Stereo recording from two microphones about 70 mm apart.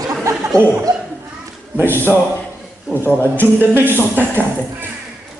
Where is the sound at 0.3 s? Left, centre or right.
Right.